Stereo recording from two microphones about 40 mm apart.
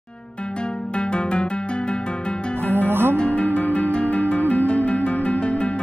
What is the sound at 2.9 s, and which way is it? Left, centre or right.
Music, right.